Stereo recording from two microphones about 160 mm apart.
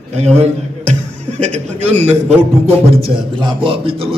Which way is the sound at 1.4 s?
45° right (ahead or behind).